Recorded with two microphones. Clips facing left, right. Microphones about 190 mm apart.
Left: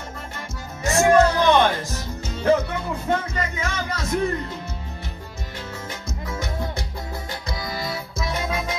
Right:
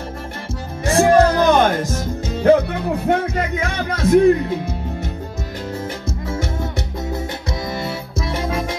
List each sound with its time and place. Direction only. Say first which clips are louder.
0.8 s music: right 3 dB; 30° right (ahead or behind); by 4.6 s 60° right (ahead or behind)
6.2 s music: right 5 dB; 30° right (ahead or behind)
7.6 s music: right 3 dB; 25° right (ahead or behind)